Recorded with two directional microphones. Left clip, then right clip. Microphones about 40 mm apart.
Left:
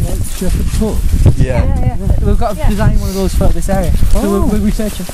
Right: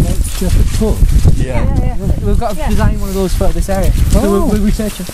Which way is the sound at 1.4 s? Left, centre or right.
Centre.